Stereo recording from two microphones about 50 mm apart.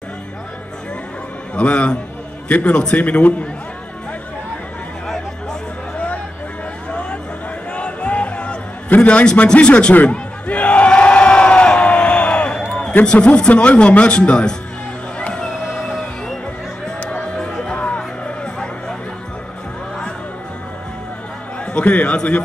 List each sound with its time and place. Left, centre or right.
1.5 s a man's voice: left
5.0 s chatter: centre
5.9 s a sound: left
7.7 s music: left
8.9 s speech: left
9.9 s crowd: left
13.0 s speech: left
15.1 s music: centre
17.4 s music: centre
21.7 s speech: left